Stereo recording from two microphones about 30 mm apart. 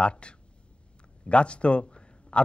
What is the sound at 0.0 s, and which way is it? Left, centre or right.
A man's voice, left.